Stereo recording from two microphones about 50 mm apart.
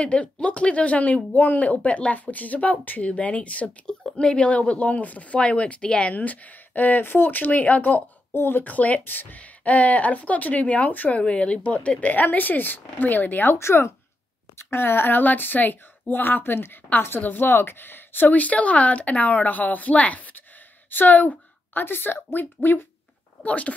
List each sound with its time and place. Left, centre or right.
0.0 s speech: left
6.1 s speech: left
8.3 s speech: left
9.4 s speech: left
13.6 s speech: left
14.6 s a woman's voice: left
21.8 s speech: left
23.4 s speech: left